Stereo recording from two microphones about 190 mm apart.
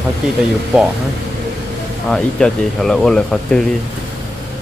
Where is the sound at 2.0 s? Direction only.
5° left (ahead or behind).